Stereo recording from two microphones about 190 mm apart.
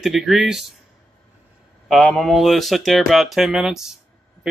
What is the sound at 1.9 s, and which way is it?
Speech, centre (ahead or behind).